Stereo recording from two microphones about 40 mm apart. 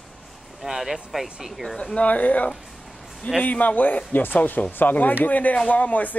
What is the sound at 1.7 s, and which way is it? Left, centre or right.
Speech, left.